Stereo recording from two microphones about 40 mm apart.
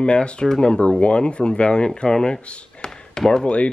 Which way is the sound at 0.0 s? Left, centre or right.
Left.